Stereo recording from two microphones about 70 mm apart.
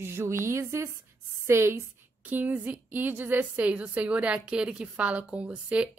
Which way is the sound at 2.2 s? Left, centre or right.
Right.